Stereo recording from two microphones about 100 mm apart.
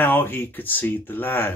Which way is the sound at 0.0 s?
20° left (ahead or behind).